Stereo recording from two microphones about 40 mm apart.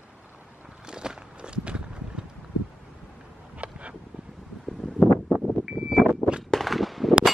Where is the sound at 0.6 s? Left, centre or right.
Centre.